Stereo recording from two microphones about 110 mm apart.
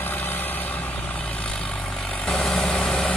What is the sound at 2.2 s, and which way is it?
Vehicle, 10° left (ahead or behind).